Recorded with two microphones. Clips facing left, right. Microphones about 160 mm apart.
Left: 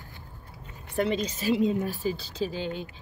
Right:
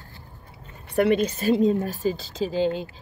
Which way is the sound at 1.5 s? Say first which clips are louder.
Right 3 dB; 45° right (ahead or behind).